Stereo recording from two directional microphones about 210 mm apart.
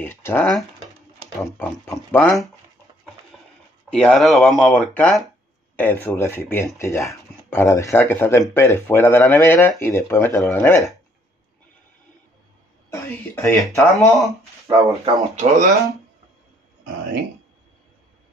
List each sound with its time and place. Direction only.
0.0 s speech: 10° left (ahead or behind)
3.3 s a sound: 5° left (ahead or behind)
3.9 s speech: centre (ahead or behind)
12.9 s speech: 10° left (ahead or behind)
13.9 s speech: centre (ahead or behind)
14.7 s speech: 15° right (ahead or behind)
15.0 s speech: 35° right (ahead or behind)